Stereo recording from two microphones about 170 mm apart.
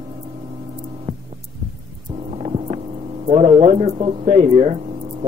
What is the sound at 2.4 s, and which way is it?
Vehicle, 35° right (ahead or behind).